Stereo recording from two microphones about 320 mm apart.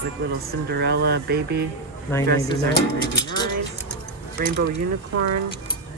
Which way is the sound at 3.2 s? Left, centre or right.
Centre.